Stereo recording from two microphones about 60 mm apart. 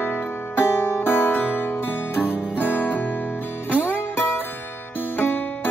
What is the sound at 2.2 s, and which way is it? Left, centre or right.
Guitar, centre.